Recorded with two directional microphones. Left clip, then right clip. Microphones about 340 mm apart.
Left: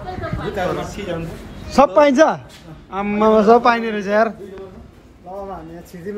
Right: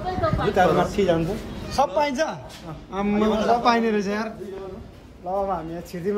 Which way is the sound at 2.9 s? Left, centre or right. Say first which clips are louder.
Left 8 dB; centre.